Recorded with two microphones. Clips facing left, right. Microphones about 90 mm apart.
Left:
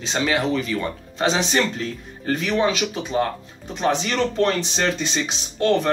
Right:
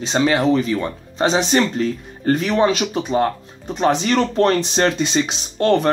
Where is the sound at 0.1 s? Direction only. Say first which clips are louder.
Right 5 dB; 35° right (ahead or behind).